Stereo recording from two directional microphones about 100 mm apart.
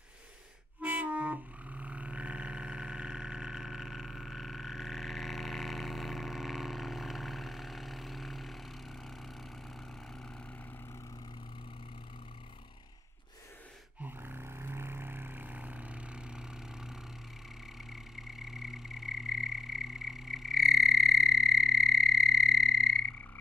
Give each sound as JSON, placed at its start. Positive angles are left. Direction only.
{"t": 0.7, "sound": "music", "side_deg": -15}
{"t": 14.0, "sound": "roar", "side_deg": -20}
{"t": 17.8, "sound": "frog", "side_deg": -5}